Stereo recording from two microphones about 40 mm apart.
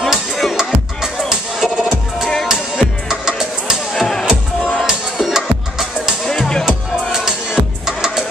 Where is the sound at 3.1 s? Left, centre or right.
Centre.